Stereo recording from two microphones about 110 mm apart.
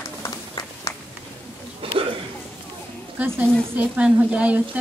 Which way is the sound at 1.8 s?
55° right (ahead or behind).